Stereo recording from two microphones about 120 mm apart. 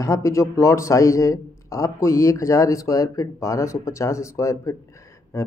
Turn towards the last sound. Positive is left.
turn(degrees=25)  # may be behind; listen again after turning